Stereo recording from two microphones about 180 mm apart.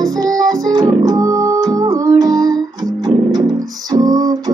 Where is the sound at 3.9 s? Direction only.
20° right (ahead or behind).